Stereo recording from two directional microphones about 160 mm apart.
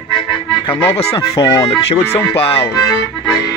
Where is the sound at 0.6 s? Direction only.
30° left (ahead or behind).